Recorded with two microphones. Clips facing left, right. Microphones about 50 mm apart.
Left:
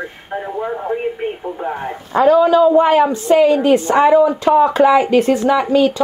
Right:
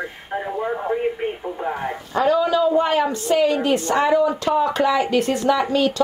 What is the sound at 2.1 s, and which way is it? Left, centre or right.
A woman's voice, left.